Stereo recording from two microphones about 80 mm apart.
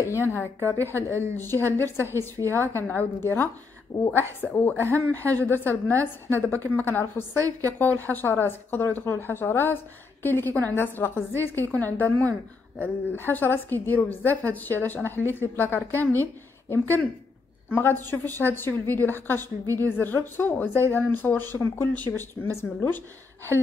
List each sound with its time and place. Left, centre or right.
0.3 s a woman's voice: left
0.9 s a woman's voice: right
1.3 s a woman's voice: left